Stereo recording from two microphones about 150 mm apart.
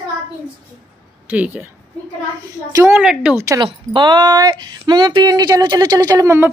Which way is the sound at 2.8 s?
10° right (ahead or behind).